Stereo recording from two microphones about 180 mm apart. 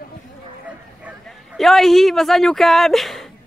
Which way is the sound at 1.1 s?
10° right (ahead or behind).